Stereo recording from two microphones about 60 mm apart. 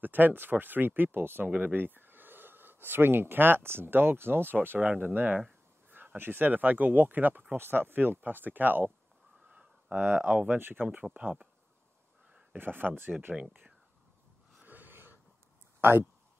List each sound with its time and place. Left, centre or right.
0.0 s speech: right
4.7 s speech: right
9.5 s a sound: centre
9.9 s speech: right
12.5 s speech: right
13.3 s speech: centre
14.6 s wheeze: right
15.8 s speech: right